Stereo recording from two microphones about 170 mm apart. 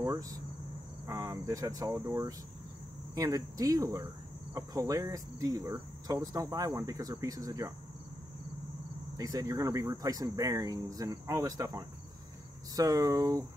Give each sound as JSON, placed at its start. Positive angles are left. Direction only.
{"t": 0.0, "sound": "cricket", "side_deg": -20}
{"t": 1.0, "sound": "speech", "side_deg": -15}
{"t": 3.2, "sound": "cricket", "side_deg": -20}
{"t": 9.1, "sound": "cricket", "side_deg": -20}